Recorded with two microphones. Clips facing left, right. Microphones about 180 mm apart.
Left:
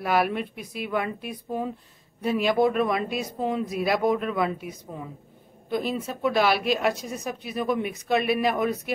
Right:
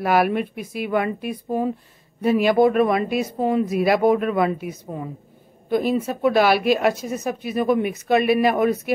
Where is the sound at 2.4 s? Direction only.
60° right (ahead or behind).